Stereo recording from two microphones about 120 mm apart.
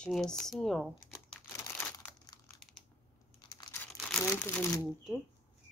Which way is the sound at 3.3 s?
35° left (ahead or behind).